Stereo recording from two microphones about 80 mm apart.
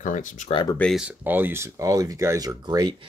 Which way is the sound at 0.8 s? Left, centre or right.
Centre.